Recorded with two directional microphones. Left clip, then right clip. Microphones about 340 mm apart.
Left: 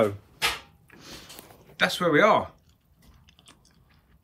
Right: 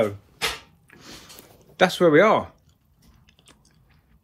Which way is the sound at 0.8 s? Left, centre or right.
Right.